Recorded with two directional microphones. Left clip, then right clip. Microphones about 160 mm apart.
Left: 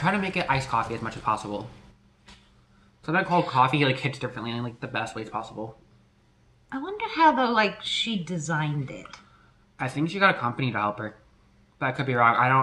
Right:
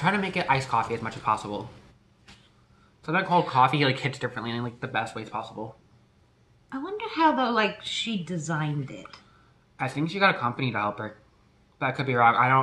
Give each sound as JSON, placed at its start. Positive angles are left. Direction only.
{"t": 0.0, "sound": "speech", "side_deg": -5}
{"t": 3.0, "sound": "a man's voice", "side_deg": -5}
{"t": 6.7, "sound": "a woman's voice", "side_deg": 25}
{"t": 9.8, "sound": "speech", "side_deg": -5}